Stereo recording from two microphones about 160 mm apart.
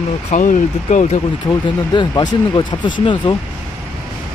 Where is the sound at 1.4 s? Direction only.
25° left (ahead or behind).